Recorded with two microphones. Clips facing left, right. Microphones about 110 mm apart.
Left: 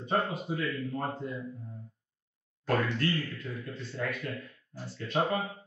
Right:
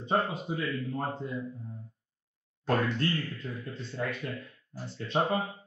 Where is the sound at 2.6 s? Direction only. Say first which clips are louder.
Right 1 dB; 25° right (ahead or behind).